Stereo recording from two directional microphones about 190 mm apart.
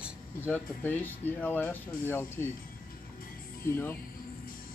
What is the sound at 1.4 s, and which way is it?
Speech, 10° left (ahead or behind).